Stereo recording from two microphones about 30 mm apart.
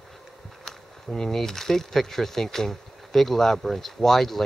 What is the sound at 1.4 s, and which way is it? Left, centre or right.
Speech, centre.